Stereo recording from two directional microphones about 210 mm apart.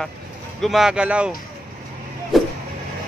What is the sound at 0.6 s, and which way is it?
Speech, centre (ahead or behind).